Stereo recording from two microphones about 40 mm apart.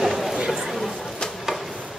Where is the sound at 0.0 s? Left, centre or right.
Centre.